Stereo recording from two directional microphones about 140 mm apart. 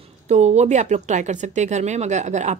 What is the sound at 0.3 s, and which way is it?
Speech, 55° right (ahead or behind).